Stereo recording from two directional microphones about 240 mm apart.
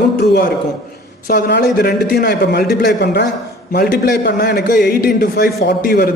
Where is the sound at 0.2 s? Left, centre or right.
Left.